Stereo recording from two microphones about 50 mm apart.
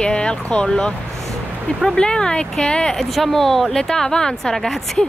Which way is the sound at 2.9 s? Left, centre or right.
Centre.